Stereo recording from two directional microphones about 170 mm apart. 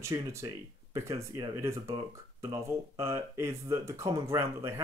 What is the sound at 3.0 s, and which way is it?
Speech, 15° right (ahead or behind).